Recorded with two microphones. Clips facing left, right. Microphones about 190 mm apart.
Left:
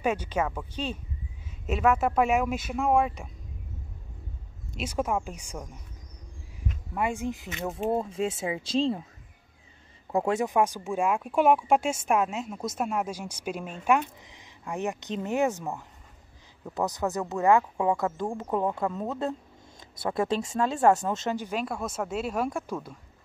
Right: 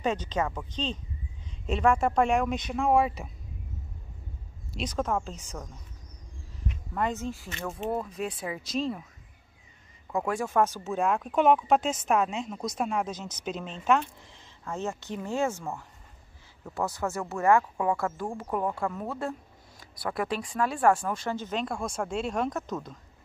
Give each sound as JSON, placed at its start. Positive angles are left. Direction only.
{"t": 0.0, "sound": "speech", "side_deg": 10}
{"t": 4.7, "sound": "speech", "side_deg": 10}
{"t": 6.9, "sound": "speech", "side_deg": 10}
{"t": 10.1, "sound": "speech", "side_deg": 25}